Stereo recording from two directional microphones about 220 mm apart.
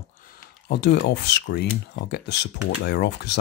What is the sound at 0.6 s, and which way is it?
Speech, 50° left (ahead or behind).